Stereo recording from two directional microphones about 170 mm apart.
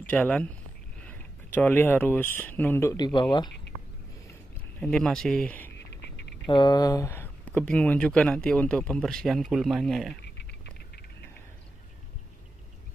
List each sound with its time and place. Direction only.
0.1 s speech: 10° left (ahead or behind)
3.1 s speech: 30° left (ahead or behind)
4.7 s speech: 5° left (ahead or behind)
5.8 s a sound: 90° left
6.4 s speech: 25° left (ahead or behind); by 10.1 s centre (ahead or behind)